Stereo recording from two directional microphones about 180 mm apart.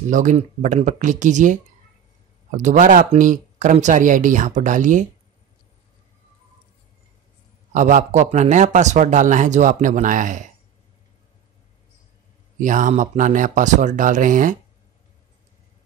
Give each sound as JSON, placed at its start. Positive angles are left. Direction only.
{"t": 0.1, "sound": "speech", "side_deg": -45}
{"t": 7.7, "sound": "speech", "side_deg": -45}
{"t": 12.5, "sound": "speech", "side_deg": -45}